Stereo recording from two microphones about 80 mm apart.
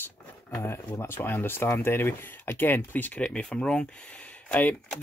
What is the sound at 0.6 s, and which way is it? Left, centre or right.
Speech, left.